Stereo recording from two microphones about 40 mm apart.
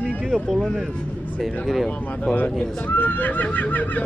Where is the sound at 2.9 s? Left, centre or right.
Left.